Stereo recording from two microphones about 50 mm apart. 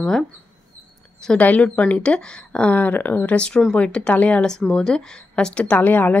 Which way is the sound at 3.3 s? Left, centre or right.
Left.